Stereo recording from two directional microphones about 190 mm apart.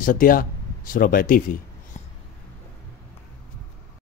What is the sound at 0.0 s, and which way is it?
Speech, 45° left (ahead or behind).